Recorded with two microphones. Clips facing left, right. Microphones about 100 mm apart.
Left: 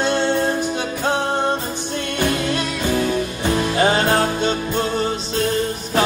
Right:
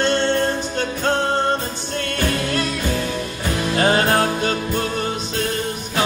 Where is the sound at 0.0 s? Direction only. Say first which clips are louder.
Even; 10° left (ahead or behind).